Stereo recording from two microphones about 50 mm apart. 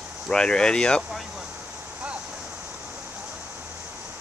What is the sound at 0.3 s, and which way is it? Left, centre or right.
Speech, centre.